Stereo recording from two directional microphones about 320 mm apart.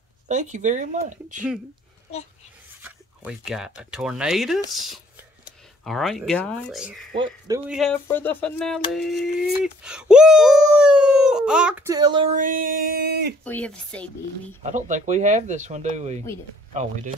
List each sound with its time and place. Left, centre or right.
0.3 s speech: right
2.8 s speech: centre; by 13.3 s right
13.4 s speech: centre
14.6 s speech: right